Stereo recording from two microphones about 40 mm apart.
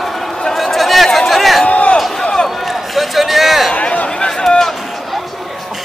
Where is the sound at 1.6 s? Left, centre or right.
Left.